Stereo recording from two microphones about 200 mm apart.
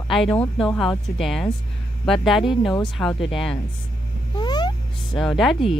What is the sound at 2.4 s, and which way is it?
Speech, 25° left (ahead or behind).